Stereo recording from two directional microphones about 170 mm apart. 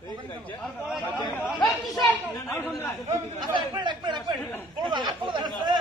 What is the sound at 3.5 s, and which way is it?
Speech, 25° right (ahead or behind).